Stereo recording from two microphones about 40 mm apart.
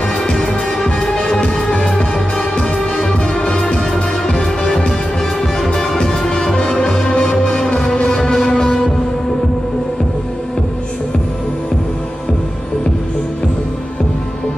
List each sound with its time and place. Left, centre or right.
0.3 s music: centre